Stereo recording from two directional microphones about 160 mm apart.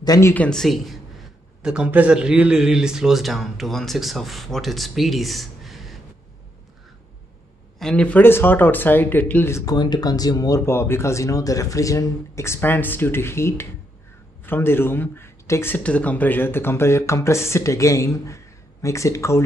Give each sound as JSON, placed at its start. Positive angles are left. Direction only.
{"t": 0.0, "sound": "speech", "side_deg": 20}
{"t": 0.3, "sound": "a man's voice", "side_deg": 5}
{"t": 7.8, "sound": "speech", "side_deg": 5}